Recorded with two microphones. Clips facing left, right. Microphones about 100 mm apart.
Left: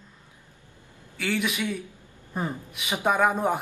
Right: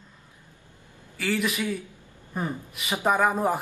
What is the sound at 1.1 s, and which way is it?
Speech, centre (ahead or behind).